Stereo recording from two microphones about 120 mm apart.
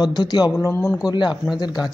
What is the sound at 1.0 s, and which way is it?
Speech, 40° left (ahead or behind).